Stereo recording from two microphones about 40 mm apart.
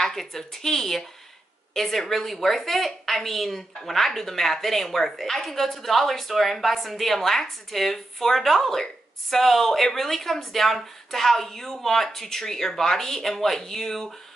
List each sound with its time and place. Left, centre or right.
0.0 s a woman's voice: centre